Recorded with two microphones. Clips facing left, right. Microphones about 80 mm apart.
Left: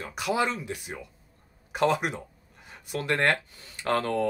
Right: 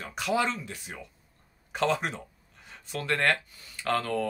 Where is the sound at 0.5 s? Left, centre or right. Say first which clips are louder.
Left 2 dB; centre.